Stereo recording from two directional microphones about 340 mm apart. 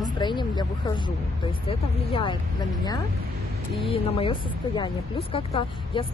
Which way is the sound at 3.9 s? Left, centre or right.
Centre.